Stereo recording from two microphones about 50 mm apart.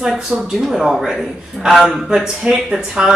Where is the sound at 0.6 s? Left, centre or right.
Centre.